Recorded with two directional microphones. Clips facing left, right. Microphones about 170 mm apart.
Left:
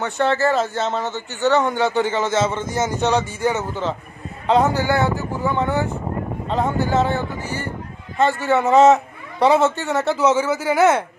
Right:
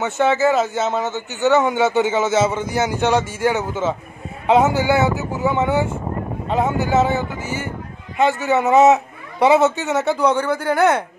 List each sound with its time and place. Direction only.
0.0 s speech: 5° right (ahead or behind)
1.1 s a man's voice: 20° right (ahead or behind)
1.5 s speech: 5° right (ahead or behind)
8.3 s speech: centre (ahead or behind)